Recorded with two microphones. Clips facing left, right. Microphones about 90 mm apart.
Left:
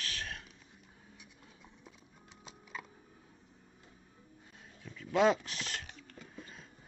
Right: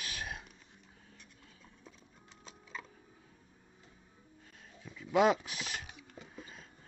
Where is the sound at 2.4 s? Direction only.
5° left (ahead or behind).